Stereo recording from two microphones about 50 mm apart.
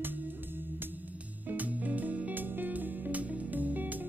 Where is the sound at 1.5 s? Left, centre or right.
Right.